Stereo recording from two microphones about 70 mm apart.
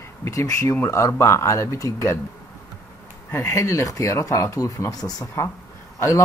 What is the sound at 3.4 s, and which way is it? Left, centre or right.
Speech, left.